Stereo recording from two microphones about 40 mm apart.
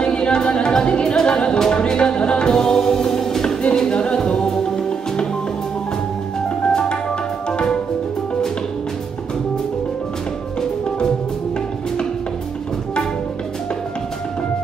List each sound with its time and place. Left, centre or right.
0.0 s music: left
1.2 s speech: left
1.8 s music: left
6.7 s music: centre